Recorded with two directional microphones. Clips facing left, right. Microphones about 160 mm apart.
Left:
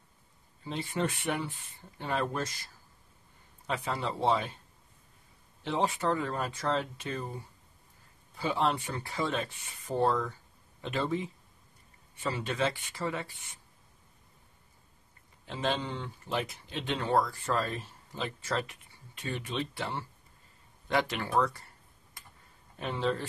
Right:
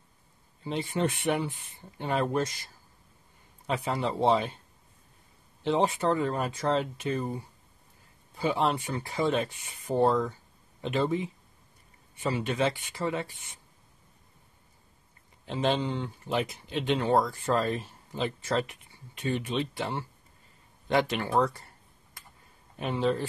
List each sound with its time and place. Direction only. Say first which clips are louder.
0.7 s speech: right 4 dB; 20° right (ahead or behind)
3.6 s speech: right 4 dB; 20° right (ahead or behind)
5.6 s speech: right 4 dB; 20° right (ahead or behind)
8.4 s speech: right 3 dB; 20° right (ahead or behind)
12.2 s speech: right 3 dB; 15° right (ahead or behind)
15.4 s speech: right 5 dB; 20° right (ahead or behind)
22.8 s speech: right 4 dB; 15° right (ahead or behind)